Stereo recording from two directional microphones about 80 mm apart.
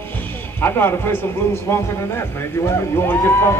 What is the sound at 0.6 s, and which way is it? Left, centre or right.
Speech, left.